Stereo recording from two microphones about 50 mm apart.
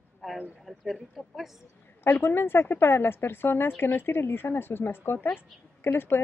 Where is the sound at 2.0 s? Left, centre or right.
Left.